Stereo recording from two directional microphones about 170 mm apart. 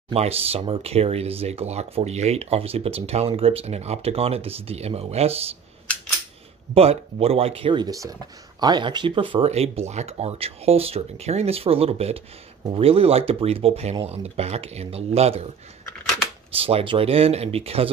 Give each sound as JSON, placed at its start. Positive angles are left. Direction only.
{"t": 0.1, "sound": "speech", "side_deg": -35}
{"t": 6.7, "sound": "speech", "side_deg": -35}
{"t": 16.5, "sound": "speech", "side_deg": -35}